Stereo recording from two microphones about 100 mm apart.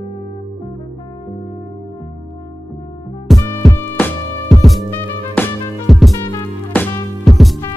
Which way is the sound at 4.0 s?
20° left (ahead or behind).